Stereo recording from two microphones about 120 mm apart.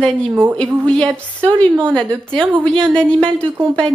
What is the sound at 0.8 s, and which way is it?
A woman's voice, 5° left (ahead or behind).